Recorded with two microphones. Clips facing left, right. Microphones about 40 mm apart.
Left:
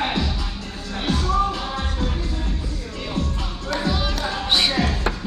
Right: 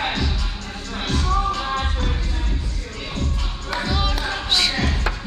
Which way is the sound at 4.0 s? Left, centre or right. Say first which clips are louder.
Right 1 dB; centre.